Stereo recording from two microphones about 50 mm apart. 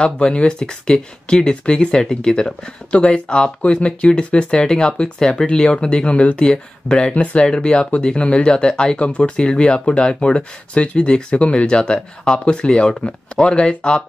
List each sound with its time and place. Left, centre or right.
0.0 s speech: centre